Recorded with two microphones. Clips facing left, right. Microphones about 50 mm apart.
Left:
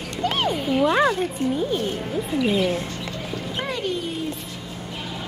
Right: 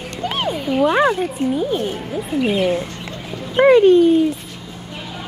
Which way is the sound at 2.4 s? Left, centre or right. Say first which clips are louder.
Right 4 dB; right.